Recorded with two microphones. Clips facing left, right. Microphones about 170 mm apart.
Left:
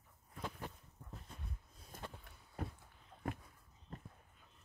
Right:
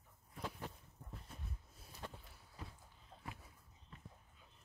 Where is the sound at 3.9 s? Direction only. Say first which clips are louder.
Left 8 dB; 45° left (ahead or behind).